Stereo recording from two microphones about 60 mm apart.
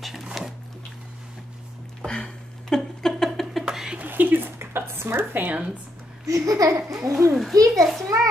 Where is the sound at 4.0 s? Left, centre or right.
Right.